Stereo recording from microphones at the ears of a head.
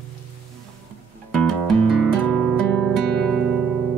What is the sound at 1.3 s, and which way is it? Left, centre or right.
Music, right.